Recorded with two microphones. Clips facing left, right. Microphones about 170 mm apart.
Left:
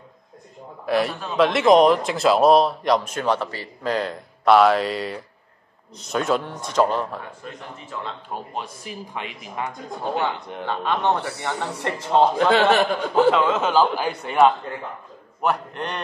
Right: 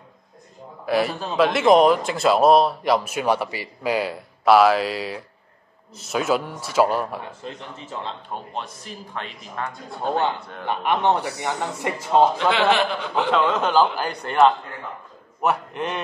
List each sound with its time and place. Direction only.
0.8 s a man's voice: centre (ahead or behind)
7.4 s speech: 25° right (ahead or behind)
8.3 s speech: 10° left (ahead or behind)
10.7 s a man's voice: 15° right (ahead or behind)
11.4 s a man's voice: 10° right (ahead or behind)
12.4 s a man's voice: 45° left (ahead or behind)
13.3 s a man's voice: 5° left (ahead or behind)